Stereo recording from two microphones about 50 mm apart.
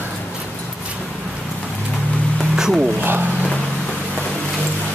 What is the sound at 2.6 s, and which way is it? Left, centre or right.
Music, centre.